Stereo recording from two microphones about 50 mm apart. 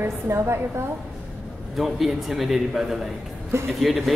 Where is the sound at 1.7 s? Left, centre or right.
Centre.